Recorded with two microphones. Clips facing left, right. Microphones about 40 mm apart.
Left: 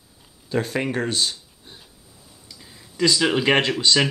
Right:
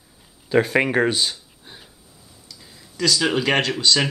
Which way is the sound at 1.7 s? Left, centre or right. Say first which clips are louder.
Right 2 dB; centre.